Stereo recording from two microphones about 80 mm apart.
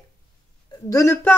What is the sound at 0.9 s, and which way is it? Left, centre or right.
Speech, left.